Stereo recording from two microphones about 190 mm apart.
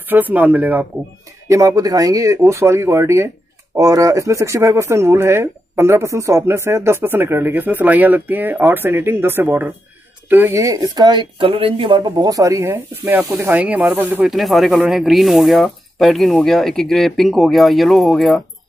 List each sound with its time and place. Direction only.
0.1 s speech: 10° right (ahead or behind)